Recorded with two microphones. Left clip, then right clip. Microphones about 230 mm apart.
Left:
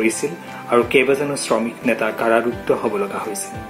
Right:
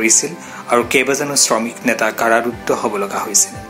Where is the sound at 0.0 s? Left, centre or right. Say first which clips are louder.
Right 4 dB; centre.